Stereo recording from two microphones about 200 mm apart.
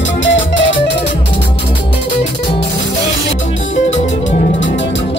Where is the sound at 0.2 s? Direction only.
70° left (ahead or behind).